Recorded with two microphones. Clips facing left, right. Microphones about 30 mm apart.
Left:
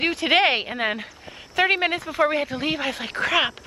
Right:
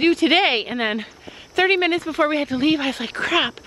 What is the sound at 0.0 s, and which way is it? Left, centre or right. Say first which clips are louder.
Speech: right 3 dB; centre.